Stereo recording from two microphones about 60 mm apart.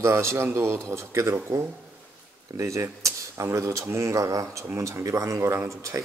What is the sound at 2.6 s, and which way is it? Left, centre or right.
Speech, right.